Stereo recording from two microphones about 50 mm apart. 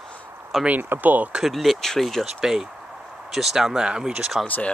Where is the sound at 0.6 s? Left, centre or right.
Right.